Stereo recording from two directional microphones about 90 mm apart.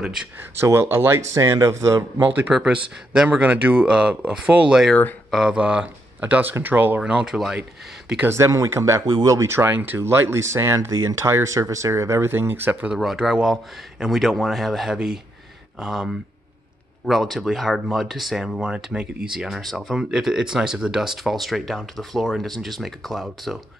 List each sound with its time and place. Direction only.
0.6 s speech: 30° right (ahead or behind)
2.5 s speech: 10° right (ahead or behind)
7.0 s speech: 10° right (ahead or behind)
8.3 s speech: 35° right (ahead or behind)
9.1 s speech: 45° right (ahead or behind)
9.4 s speech: 25° right (ahead or behind)
12.9 s speech: 5° right (ahead or behind)